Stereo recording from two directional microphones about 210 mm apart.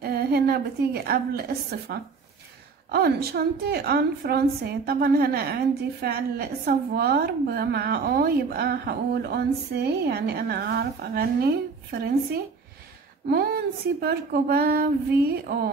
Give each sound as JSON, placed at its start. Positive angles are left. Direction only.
{"t": 0.0, "sound": "a woman's voice", "side_deg": -50}
{"t": 13.3, "sound": "a woman's voice", "side_deg": -50}